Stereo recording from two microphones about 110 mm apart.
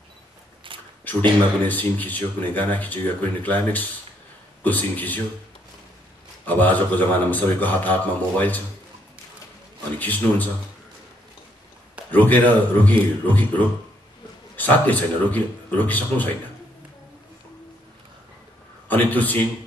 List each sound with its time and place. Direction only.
0.7 s shuffling cards: 50° right (ahead or behind)
1.6 s speech: 15° left (ahead or behind)
6.4 s speech: 15° left (ahead or behind)
9.9 s speech: 15° left (ahead or behind)
12.1 s speech: 15° left (ahead or behind)
18.9 s speech: 15° left (ahead or behind)